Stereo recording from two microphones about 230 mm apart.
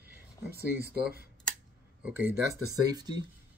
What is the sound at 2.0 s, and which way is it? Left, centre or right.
Speech, centre.